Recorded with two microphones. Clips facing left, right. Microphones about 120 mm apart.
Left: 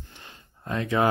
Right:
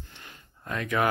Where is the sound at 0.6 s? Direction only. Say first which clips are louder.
Left 3 dB; 25° left (ahead or behind).